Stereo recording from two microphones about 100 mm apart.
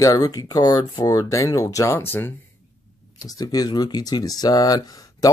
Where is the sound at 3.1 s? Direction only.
40° left (ahead or behind).